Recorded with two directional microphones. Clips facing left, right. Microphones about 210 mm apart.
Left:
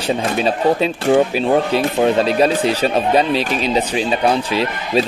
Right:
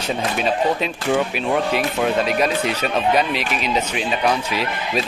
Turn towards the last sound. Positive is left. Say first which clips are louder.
# left 5 dB
turn(degrees=30)  # may be behind; listen again after turning